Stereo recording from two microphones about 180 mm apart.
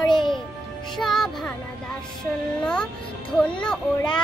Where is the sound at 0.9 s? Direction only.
Centre (ahead or behind).